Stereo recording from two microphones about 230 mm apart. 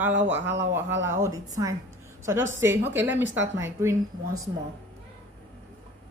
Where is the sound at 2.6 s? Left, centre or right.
Centre.